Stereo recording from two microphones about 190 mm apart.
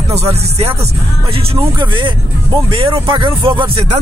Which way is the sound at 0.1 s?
30° right (ahead or behind).